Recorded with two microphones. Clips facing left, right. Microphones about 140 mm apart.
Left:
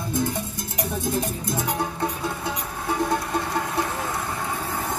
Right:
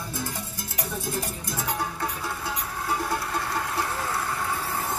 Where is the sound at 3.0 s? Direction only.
20° left (ahead or behind).